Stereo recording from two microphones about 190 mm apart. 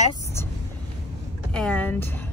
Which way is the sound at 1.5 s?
5° left (ahead or behind).